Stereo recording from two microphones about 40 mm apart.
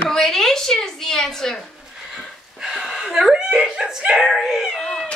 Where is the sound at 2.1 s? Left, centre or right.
Centre.